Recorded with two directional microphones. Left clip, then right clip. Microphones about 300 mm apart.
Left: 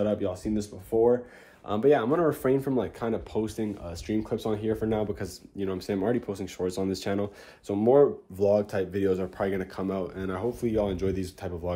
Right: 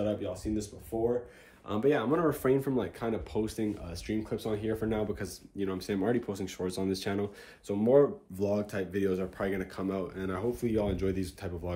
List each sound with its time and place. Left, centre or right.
0.0 s speech: left
1.7 s speech: centre